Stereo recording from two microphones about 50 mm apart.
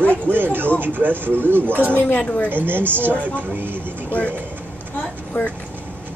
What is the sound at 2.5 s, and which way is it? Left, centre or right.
Speech, right.